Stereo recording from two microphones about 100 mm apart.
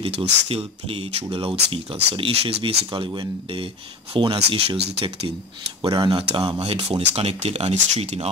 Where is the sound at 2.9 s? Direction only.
55° right (ahead or behind); by 5.3 s 70° right (ahead or behind).